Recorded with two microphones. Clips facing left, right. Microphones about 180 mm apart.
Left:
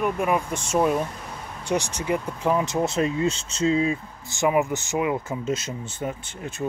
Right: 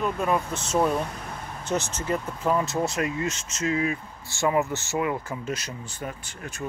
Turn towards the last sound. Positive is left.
turn(degrees=20)  # may be behind; listen again after turning